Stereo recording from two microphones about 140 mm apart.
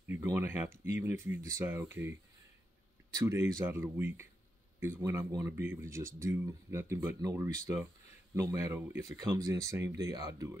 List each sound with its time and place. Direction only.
0.1 s speech: 15° right (ahead or behind)
3.2 s speech: 20° right (ahead or behind)